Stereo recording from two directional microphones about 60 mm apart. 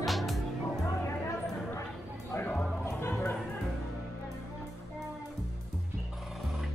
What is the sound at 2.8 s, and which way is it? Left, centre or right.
Music, left.